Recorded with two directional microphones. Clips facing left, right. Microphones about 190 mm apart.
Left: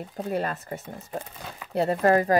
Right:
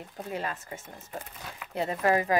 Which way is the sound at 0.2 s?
40° left (ahead or behind).